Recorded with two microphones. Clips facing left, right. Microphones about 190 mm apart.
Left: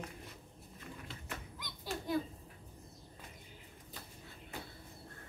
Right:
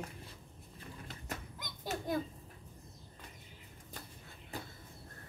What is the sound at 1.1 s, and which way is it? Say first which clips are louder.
Children playing: right 2 dB; 45° right (ahead or behind).